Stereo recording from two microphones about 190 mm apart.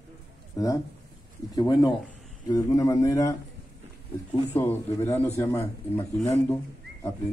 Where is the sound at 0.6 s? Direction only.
20° left (ahead or behind).